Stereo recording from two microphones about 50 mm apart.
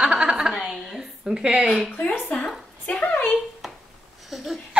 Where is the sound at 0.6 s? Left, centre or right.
Centre; by 1.7 s right.